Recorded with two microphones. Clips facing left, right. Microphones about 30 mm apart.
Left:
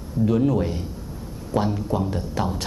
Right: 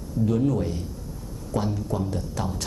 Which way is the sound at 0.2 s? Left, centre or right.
Left.